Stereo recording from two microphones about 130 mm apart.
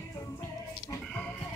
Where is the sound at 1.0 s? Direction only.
5° left (ahead or behind).